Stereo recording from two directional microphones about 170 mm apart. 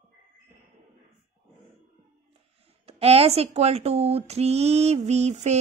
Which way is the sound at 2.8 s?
35° right (ahead or behind).